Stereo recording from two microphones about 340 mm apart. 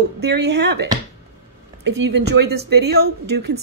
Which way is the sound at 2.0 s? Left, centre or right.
Right.